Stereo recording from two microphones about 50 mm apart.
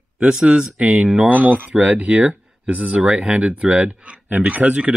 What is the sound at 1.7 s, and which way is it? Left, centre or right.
Speech, right.